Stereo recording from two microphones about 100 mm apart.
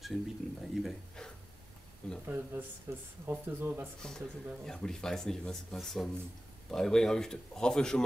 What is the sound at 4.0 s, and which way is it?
A man's voice, 5° left (ahead or behind).